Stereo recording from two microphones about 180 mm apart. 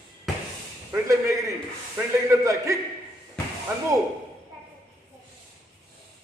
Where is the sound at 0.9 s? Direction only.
15° right (ahead or behind).